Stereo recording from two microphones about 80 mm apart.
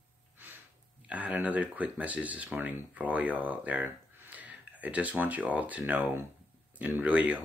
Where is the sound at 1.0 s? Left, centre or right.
Centre.